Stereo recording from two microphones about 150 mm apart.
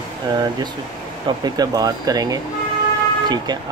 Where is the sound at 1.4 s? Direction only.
25° right (ahead or behind).